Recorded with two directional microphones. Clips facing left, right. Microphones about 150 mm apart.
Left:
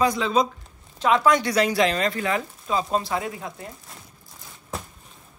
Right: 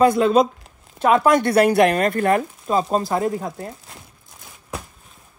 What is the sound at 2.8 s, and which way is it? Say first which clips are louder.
Speech: right 6 dB; 45° right (ahead or behind).